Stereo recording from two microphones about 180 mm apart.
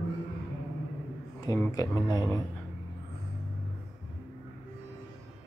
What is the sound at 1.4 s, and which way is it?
Speech, 15° left (ahead or behind).